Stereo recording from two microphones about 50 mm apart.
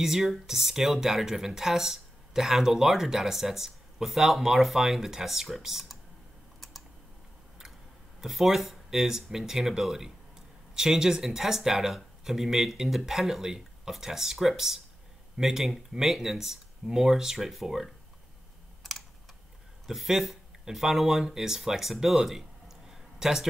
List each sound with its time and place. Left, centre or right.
0.0 s speech: centre
8.2 s speech: centre
18.8 s typing: centre
19.9 s speech: centre